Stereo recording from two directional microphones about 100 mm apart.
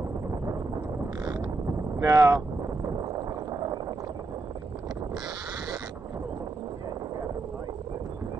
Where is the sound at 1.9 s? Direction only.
30° right (ahead or behind).